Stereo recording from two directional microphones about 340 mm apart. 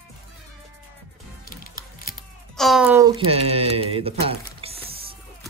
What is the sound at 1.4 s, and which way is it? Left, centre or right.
Music, left.